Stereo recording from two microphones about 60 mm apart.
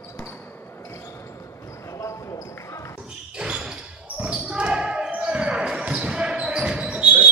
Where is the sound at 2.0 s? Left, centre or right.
Left.